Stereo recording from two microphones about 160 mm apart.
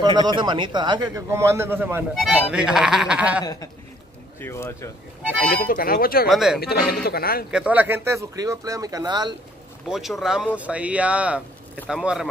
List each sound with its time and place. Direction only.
0.0 s a man's voice: 25° right (ahead or behind); by 3.4 s 10° right (ahead or behind)
4.4 s speech: 15° left (ahead or behind)
5.7 s a man's voice: 65° left (ahead or behind)
6.2 s speech: centre (ahead or behind)
6.6 s a man's voice: 75° left (ahead or behind)
7.5 s a man's voice: 10° right (ahead or behind); by 9.3 s 25° right (ahead or behind)
9.8 s speech: centre (ahead or behind)